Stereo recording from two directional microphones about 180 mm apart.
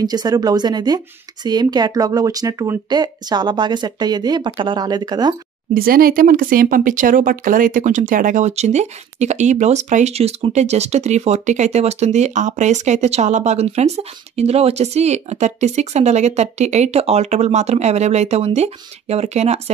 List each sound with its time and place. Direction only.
0.0 s speech: 20° right (ahead or behind)
5.8 s speech: 55° right (ahead or behind); by 19.6 s 40° right (ahead or behind)